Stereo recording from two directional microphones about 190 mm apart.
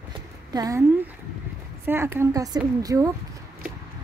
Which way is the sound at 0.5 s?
20° right (ahead or behind).